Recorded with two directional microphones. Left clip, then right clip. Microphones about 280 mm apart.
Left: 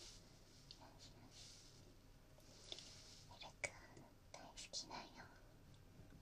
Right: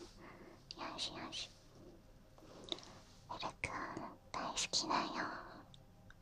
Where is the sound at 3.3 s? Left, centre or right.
Centre.